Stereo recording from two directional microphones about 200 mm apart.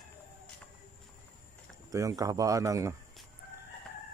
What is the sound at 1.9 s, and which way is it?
A man's voice, 15° right (ahead or behind).